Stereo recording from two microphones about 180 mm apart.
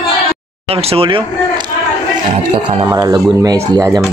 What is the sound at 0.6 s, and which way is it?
Speech, 35° right (ahead or behind).